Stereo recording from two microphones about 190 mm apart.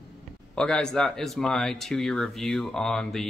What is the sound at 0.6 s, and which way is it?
Speech, 5° left (ahead or behind).